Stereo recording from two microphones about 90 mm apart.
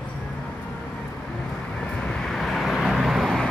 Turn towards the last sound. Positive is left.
turn(degrees=0)  # may be behind; listen again after turning